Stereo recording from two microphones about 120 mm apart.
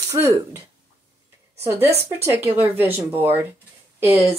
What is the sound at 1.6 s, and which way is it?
Speech, 20° right (ahead or behind).